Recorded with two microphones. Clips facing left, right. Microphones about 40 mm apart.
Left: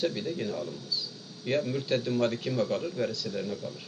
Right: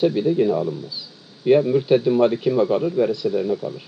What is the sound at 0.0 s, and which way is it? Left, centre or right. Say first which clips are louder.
A man's voice: right 13 dB; right.